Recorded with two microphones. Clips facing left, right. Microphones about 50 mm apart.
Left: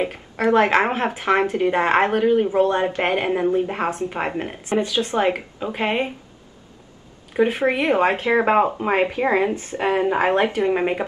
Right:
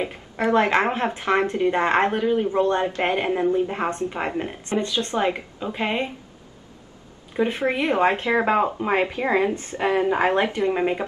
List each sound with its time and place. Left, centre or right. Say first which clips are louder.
0.7 s a woman's voice: left 2 dB; centre
7.4 s a woman's voice: left 3 dB; left